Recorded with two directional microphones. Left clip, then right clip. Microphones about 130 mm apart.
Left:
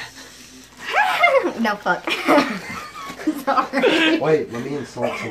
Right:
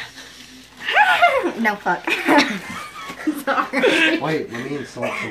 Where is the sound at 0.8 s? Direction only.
40° right (ahead or behind).